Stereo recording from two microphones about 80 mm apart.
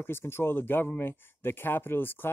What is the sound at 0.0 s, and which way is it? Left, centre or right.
Speech, left.